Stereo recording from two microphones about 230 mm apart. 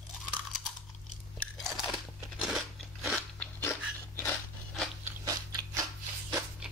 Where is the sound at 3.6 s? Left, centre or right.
Centre.